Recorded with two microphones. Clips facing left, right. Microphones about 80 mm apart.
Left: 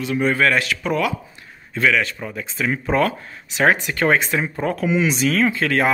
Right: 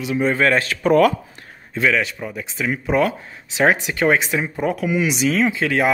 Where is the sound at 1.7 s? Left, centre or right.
Centre.